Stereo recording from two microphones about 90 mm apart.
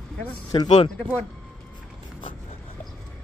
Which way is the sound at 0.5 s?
60° left (ahead or behind).